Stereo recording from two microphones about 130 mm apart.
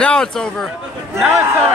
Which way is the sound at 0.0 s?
5° left (ahead or behind).